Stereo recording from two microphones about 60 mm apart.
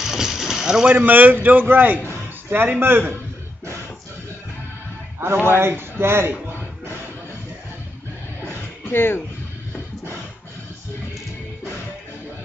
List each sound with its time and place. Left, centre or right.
0.0 s a sound: centre
0.8 s a man's voice: right
5.2 s a man's voice: right
8.8 s speech: left